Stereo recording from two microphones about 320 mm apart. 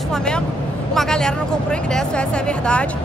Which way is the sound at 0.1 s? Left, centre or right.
Centre.